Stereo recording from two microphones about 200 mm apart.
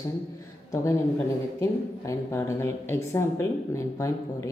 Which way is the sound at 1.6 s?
15° left (ahead or behind).